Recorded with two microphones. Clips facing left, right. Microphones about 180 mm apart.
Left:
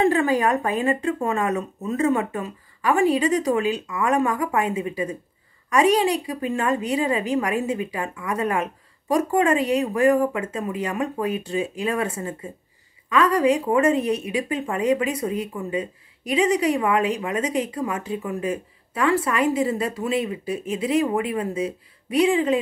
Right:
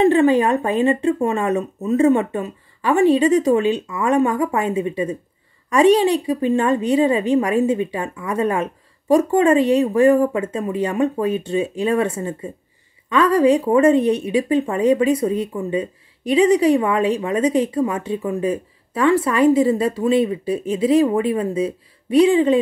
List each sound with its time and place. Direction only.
0.0 s speech: 25° right (ahead or behind)